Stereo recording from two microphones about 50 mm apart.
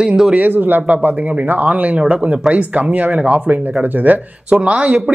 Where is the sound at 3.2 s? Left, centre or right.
Right.